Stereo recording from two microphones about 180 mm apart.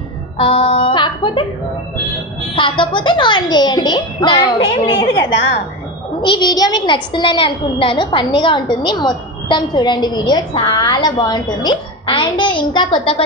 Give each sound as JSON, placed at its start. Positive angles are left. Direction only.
{"t": 0.4, "sound": "a woman's voice", "side_deg": 30}
{"t": 2.5, "sound": "a woman's voice", "side_deg": 30}
{"t": 6.2, "sound": "a woman's voice", "side_deg": 25}